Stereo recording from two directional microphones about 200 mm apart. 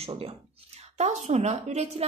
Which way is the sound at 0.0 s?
30° right (ahead or behind).